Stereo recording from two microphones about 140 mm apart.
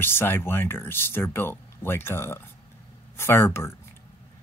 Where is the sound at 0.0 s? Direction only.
15° left (ahead or behind).